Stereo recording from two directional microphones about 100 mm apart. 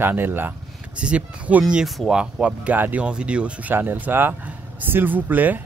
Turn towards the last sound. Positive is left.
turn(degrees=-15)  # may be behind; listen again after turning